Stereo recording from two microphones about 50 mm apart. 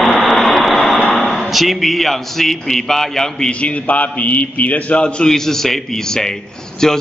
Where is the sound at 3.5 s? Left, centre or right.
Left.